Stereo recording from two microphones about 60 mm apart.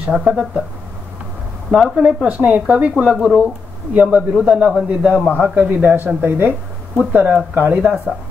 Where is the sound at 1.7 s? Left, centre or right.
Centre.